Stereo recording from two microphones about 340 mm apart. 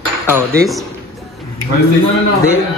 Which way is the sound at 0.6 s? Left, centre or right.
Centre.